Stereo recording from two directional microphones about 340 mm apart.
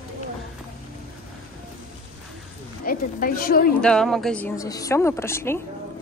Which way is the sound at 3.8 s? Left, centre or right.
Centre.